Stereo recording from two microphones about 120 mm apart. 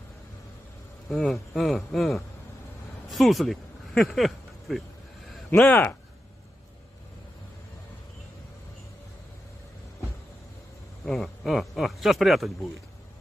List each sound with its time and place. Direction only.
1.0 s speech: centre (ahead or behind)
5.6 s speech: 15° left (ahead or behind)
11.1 s speech: centre (ahead or behind)